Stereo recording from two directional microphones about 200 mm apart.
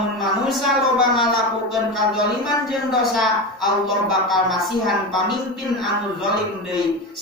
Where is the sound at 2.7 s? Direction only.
Centre (ahead or behind).